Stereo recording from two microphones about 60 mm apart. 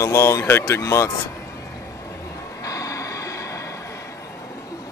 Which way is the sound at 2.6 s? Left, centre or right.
Left.